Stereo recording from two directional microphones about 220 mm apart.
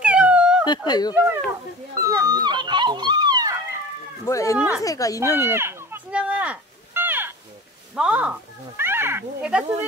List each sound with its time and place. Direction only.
0.0 s a sound: 5° right (ahead or behind)
0.7 s speech: 20° left (ahead or behind)
2.0 s speech: 15° right (ahead or behind)
4.3 s speech: 15° left (ahead or behind)
4.6 s speech: 5° right (ahead or behind)
4.8 s speech: 15° left (ahead or behind)
5.5 s a sound: 10° right (ahead or behind)
7.9 s speech: 5° right (ahead or behind)